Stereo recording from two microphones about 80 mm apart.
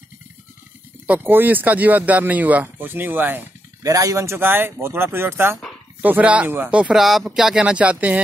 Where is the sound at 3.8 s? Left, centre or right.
Right.